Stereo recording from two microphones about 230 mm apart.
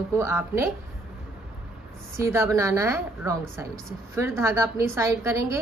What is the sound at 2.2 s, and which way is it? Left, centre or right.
A woman's voice, centre.